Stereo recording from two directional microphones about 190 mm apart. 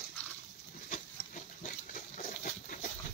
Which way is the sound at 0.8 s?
45° left (ahead or behind).